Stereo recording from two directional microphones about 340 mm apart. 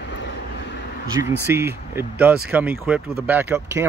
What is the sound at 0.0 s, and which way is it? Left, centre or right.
Vehicle, left.